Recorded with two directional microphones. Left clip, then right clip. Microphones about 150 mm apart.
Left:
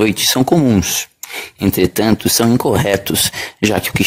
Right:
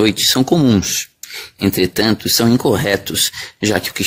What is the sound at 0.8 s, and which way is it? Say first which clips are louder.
Speech: left 1 dB; 30° left (ahead or behind).